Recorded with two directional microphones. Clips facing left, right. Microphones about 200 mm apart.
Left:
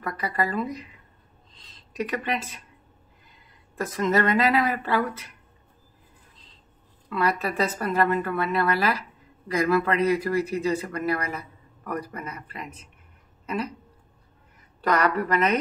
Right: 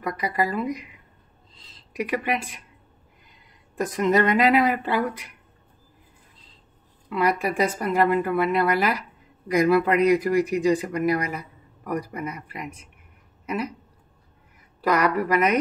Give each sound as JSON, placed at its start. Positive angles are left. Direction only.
{"t": 0.0, "sound": "speech", "side_deg": -10}
{"t": 2.0, "sound": "speech", "side_deg": -10}
{"t": 3.7, "sound": "speech", "side_deg": -15}
{"t": 7.1, "sound": "speech", "side_deg": -15}
{"t": 14.8, "sound": "speech", "side_deg": -10}